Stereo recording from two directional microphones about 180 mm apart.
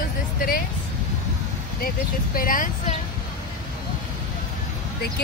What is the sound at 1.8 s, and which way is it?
Speech, 55° left (ahead or behind).